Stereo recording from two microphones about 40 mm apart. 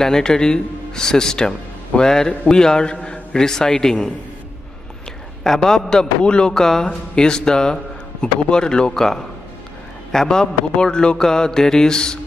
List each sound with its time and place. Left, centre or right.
0.0 s a man's voice: centre
5.4 s a man's voice: centre
6.5 s speech: centre
8.9 s a man's voice: centre